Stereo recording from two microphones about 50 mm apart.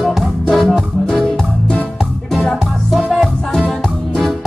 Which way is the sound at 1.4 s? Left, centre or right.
Left.